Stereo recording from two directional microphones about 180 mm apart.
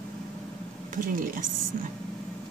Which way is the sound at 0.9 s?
50° right (ahead or behind).